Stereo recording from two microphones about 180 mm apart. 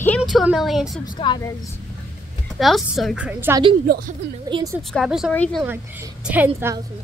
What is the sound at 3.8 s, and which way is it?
Speech, 55° right (ahead or behind).